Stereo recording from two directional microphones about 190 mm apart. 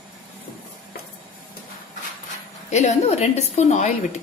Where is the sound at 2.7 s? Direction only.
40° left (ahead or behind).